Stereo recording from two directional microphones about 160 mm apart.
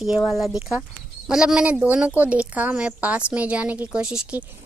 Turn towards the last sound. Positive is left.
turn(degrees=-5)  # may be behind; listen again after turning